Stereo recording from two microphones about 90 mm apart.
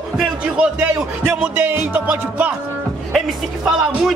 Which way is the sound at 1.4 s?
20° right (ahead or behind).